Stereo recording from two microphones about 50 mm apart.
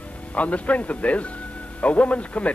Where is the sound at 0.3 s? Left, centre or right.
Left.